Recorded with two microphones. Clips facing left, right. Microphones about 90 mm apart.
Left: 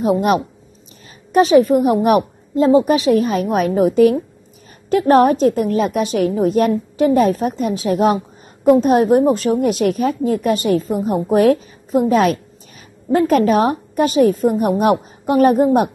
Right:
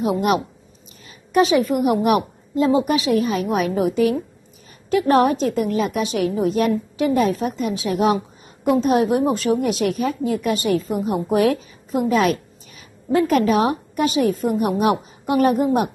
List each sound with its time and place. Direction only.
0.0 s a woman's voice: 40° left (ahead or behind)